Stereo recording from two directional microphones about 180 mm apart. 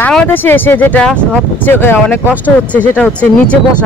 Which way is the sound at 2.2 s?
10° right (ahead or behind).